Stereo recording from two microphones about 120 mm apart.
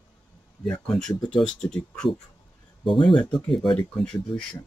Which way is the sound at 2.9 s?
45° left (ahead or behind).